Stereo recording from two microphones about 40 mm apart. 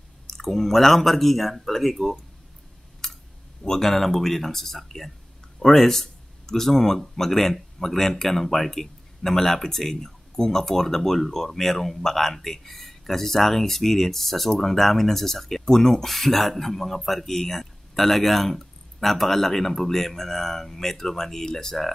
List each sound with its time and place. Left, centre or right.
0.3 s speech: centre
3.0 s a sound: centre
3.6 s speech: centre